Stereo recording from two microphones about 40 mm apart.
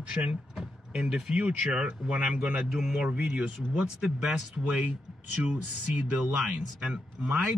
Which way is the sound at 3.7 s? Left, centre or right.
Centre.